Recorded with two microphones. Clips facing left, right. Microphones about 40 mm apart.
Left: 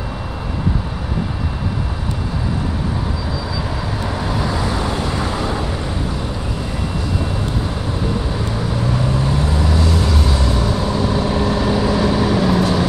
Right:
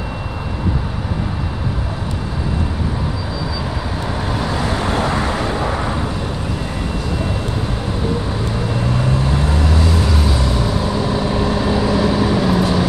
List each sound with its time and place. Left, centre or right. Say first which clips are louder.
4.3 s vehicle: right 1 dB; centre
4.6 s vehicle: right 2 dB; right
9.4 s vehicle: even; right
9.7 s vehicle: even; centre